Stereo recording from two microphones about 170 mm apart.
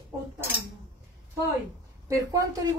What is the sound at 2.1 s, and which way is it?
Speech, 20° right (ahead or behind).